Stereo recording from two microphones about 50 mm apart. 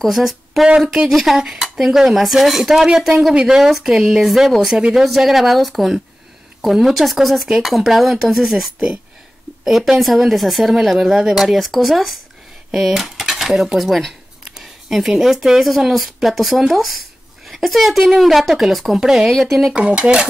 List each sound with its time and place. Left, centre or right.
0.0 s speech: centre
19.7 s speech: right